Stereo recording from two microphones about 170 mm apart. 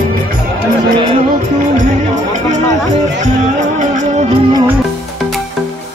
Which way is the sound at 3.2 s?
45° right (ahead or behind).